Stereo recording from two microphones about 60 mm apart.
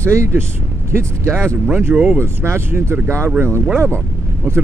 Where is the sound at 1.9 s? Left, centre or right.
Right.